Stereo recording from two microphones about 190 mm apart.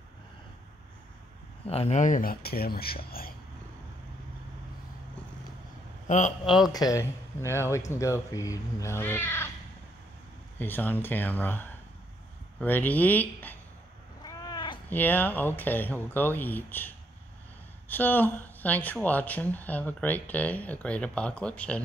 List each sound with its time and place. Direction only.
1.7 s speech: 35° left (ahead or behind); by 3.3 s 50° left (ahead or behind)
6.0 s a man's voice: 40° left (ahead or behind)
6.6 s speech: 20° left (ahead or behind)
10.6 s speech: 10° left (ahead or behind)
14.2 s cat: 20° left (ahead or behind)
14.9 s speech: 10° left (ahead or behind)